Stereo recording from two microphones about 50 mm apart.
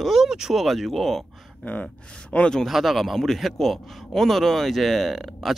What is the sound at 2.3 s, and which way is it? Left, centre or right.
Speech, left.